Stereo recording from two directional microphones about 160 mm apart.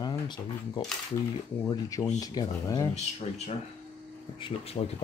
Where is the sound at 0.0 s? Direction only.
25° left (ahead or behind).